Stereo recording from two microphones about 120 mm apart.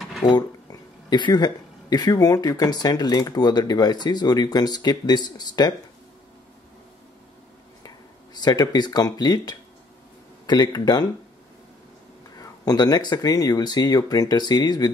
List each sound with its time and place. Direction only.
0.2 s speech: 35° left (ahead or behind)
8.4 s speech: 35° left (ahead or behind)
12.4 s speech: 30° left (ahead or behind)